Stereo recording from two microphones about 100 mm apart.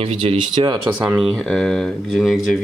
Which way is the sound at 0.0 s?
80° right.